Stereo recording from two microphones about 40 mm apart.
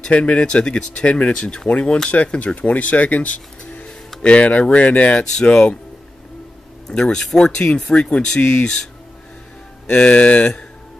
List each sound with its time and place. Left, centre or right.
0.1 s speech: left
1.4 s speech: centre
1.7 s speech: left
6.9 s speech: centre
9.8 s speech: left